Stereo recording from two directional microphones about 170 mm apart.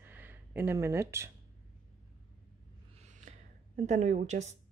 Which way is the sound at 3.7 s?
45° right (ahead or behind).